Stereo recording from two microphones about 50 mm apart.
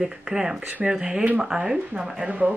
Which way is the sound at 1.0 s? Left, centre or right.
Right.